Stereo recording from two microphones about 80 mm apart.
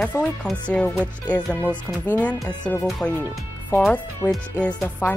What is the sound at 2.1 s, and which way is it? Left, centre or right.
Speech, centre.